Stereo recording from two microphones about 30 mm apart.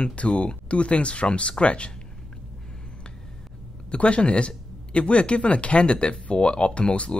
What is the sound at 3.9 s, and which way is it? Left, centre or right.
Speech, left.